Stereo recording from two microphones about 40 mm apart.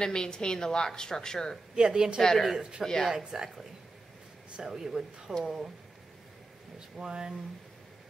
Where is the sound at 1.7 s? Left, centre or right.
Centre.